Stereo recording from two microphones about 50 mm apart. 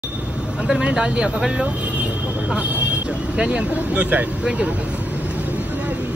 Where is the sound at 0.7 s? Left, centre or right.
Centre.